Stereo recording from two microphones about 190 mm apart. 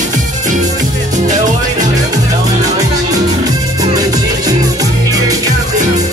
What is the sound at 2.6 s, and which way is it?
Music, 20° right (ahead or behind).